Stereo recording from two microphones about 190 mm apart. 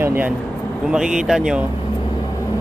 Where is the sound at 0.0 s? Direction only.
10° right (ahead or behind).